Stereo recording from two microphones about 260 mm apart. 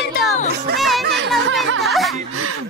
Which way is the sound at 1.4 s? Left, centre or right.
Right.